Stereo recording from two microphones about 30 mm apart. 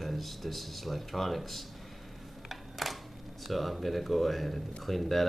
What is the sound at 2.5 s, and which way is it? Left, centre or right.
Camera, centre.